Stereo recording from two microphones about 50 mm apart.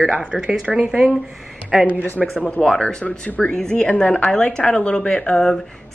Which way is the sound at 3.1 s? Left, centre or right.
Left.